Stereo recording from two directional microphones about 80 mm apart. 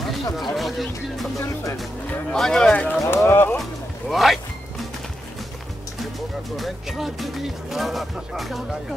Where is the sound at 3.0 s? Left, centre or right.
Left.